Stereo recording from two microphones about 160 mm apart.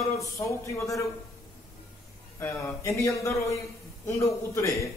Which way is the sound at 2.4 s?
15° left (ahead or behind).